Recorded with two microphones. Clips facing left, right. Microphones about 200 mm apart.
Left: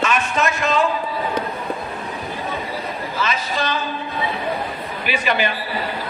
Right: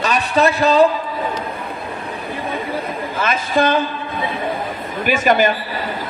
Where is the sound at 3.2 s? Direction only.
50° right (ahead or behind).